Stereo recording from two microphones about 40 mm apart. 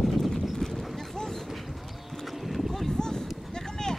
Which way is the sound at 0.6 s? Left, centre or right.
Centre.